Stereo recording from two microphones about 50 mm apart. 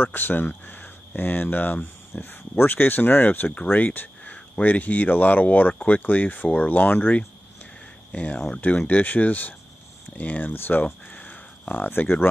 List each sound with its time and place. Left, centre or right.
0.0 s speech: left
4.2 s speech: left
7.0 s speech: left
11.1 s crow: left